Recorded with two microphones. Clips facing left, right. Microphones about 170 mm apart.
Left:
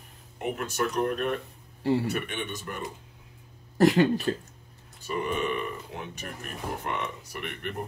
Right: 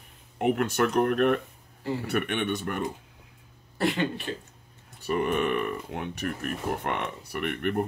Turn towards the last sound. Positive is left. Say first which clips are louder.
# right 7 dB
turn(degrees=-55)  # may be behind; listen again after turning